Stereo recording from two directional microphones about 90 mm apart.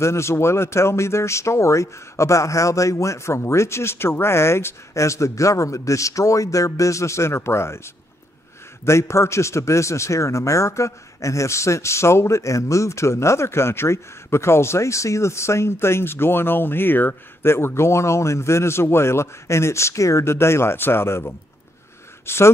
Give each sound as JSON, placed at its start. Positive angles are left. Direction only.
{"t": 0.0, "sound": "a man's voice", "side_deg": 30}
{"t": 8.8, "sound": "a man's voice", "side_deg": 30}